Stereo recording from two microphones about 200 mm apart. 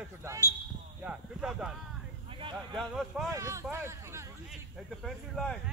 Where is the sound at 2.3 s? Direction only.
25° right (ahead or behind).